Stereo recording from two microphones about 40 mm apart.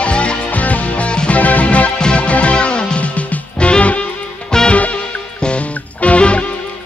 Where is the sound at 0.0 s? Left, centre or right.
Left.